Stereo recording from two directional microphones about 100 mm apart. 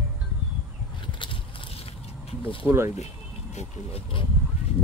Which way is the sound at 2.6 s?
20° right (ahead or behind).